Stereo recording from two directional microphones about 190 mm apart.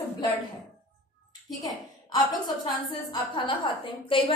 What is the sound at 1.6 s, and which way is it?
A woman's voice, 20° left (ahead or behind).